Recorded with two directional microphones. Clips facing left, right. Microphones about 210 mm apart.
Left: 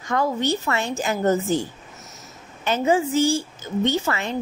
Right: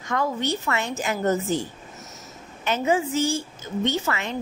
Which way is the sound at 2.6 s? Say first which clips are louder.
Left 3 dB; 30° left (ahead or behind).